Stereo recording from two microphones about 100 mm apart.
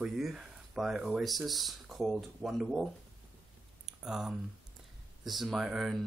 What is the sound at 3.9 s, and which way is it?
Speech, 5° right (ahead or behind).